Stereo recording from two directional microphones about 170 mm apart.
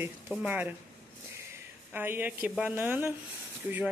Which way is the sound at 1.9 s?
10° right (ahead or behind).